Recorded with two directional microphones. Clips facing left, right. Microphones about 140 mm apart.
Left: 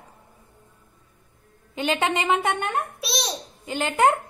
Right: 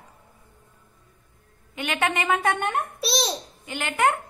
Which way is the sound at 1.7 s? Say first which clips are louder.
Left 2 dB; 30° left (ahead or behind).